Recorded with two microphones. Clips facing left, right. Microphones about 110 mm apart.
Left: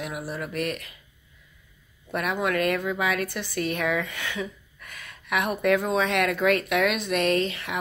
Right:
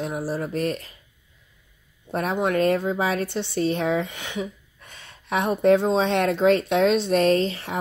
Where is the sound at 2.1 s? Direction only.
30° right (ahead or behind).